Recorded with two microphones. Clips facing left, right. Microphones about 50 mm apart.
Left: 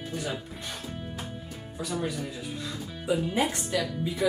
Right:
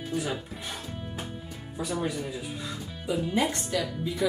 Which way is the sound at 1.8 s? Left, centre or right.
Centre.